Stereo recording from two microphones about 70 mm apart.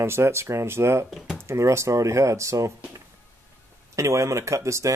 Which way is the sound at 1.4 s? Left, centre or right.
Right.